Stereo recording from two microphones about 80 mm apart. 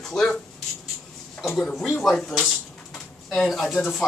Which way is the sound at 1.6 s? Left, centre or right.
Centre.